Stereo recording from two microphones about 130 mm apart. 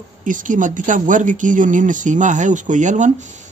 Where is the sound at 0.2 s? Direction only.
80° right.